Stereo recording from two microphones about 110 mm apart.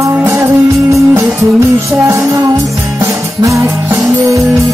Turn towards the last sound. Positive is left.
turn(degrees=-25)  # may be behind; listen again after turning